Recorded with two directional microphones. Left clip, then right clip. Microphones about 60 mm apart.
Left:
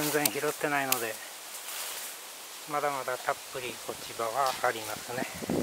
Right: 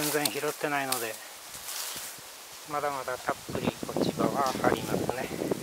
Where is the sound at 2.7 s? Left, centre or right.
Centre.